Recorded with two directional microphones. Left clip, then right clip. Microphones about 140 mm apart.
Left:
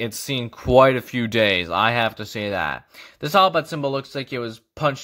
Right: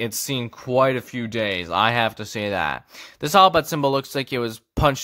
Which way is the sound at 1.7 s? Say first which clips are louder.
Even; 5° right (ahead or behind).